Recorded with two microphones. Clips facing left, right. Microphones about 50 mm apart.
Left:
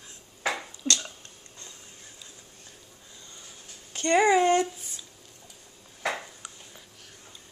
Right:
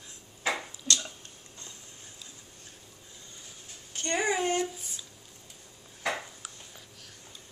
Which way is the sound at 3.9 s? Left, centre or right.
Left.